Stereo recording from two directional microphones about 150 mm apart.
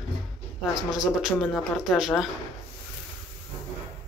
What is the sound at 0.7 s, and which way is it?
Speech, centre (ahead or behind).